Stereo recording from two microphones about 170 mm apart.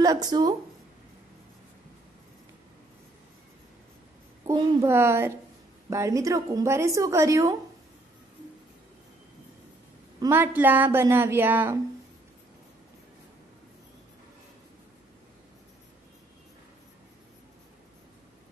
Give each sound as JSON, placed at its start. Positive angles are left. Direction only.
{"t": 0.0, "sound": "speech", "side_deg": -20}
{"t": 4.5, "sound": "a woman's voice", "side_deg": -15}
{"t": 10.2, "sound": "a woman's voice", "side_deg": -10}